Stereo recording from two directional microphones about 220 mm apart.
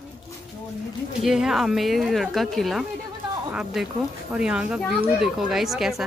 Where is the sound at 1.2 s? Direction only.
Centre (ahead or behind).